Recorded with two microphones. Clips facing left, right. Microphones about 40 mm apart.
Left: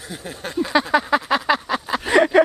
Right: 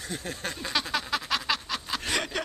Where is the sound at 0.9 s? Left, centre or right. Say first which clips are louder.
Left 11 dB; centre.